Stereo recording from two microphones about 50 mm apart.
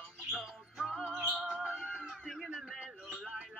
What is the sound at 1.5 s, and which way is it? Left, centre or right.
Cat, centre.